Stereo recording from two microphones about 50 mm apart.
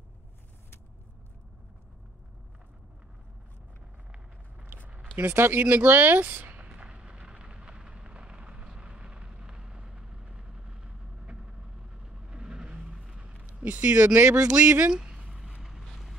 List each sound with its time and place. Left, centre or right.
4.6 s a sound: right
5.2 s speech: right
5.6 s speech: right
6.7 s vehicle: centre
12.9 s vehicle: centre
13.5 s speech: right
14.9 s a sound: centre